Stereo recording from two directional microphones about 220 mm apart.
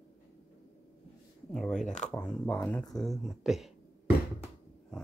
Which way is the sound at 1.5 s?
5° left (ahead or behind).